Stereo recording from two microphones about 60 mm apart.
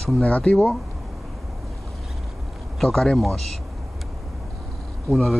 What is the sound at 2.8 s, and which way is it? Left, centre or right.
Speech, centre.